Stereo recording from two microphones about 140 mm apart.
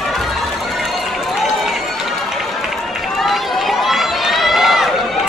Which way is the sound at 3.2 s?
Centre (ahead or behind).